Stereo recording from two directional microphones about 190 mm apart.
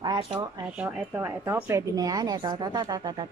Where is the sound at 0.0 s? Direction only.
20° right (ahead or behind).